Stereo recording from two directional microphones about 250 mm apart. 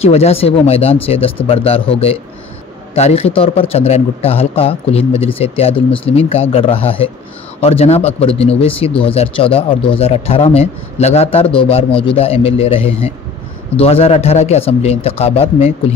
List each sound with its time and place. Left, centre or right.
0.0 s speech: left